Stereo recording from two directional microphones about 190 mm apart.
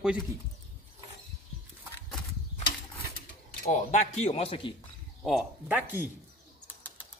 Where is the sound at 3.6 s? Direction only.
40° left (ahead or behind).